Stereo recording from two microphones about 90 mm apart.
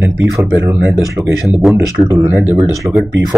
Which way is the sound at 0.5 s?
20° right (ahead or behind).